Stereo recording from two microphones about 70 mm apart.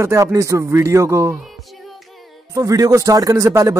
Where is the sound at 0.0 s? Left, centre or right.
Right.